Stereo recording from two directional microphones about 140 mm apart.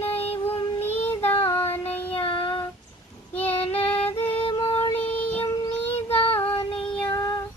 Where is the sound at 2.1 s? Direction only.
40° left (ahead or behind).